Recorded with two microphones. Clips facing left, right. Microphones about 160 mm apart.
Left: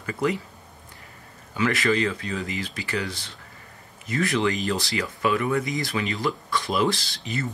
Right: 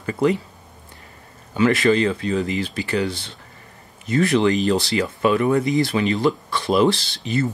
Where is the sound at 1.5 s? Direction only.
25° right (ahead or behind).